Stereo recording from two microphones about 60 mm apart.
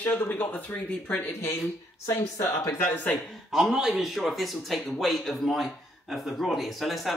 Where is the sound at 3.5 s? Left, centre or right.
Centre.